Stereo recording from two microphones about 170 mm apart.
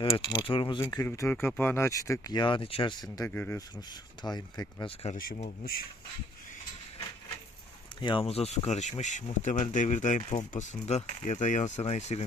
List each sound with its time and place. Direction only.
0.0 s speech: 30° left (ahead or behind)
0.8 s speech: 15° left (ahead or behind)
3.3 s speech: 10° left (ahead or behind)
4.2 s speech: 25° left (ahead or behind)
8.0 s speech: 30° left (ahead or behind)